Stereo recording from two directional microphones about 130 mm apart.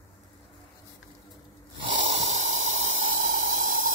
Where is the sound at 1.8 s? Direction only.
65° right (ahead or behind).